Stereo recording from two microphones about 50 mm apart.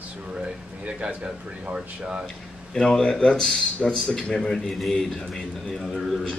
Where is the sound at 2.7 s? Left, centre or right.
Centre.